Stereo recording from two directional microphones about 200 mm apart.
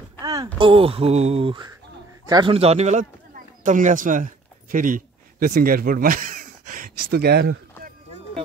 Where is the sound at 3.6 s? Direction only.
40° right (ahead or behind).